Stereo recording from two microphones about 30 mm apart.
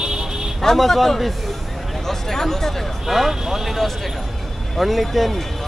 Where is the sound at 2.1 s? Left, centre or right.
Centre.